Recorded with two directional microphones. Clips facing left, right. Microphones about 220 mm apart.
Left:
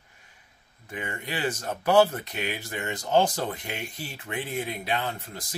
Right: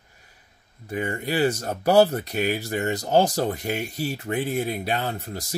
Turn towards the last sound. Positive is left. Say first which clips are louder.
# right 3 dB
turn(degrees=-40)  # may be behind; listen again after turning